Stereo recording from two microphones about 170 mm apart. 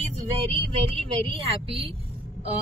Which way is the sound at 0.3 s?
35° right (ahead or behind).